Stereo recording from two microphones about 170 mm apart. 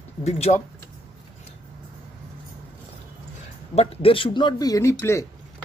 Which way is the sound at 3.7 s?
35° left (ahead or behind).